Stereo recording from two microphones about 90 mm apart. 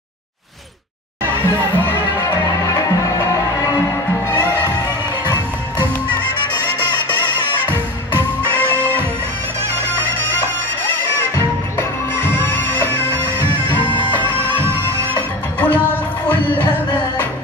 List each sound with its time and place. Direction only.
1.3 s music: 20° left (ahead or behind)
4.3 s music: 25° left (ahead or behind)
8.5 s music: 20° left (ahead or behind)
15.6 s music: 20° left (ahead or behind)